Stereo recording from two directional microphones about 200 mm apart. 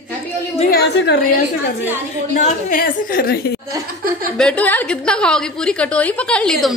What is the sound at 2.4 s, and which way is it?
A woman's voice, 45° left (ahead or behind).